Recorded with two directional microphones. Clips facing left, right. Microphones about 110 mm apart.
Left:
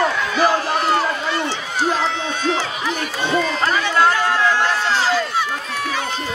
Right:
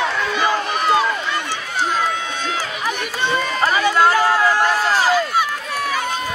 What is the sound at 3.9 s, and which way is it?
Run, 10° right (ahead or behind).